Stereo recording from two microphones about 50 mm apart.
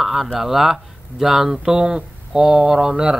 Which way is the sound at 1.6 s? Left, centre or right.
Centre.